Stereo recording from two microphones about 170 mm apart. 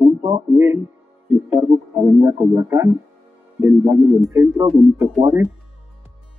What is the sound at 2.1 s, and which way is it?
Speech, 15° right (ahead or behind).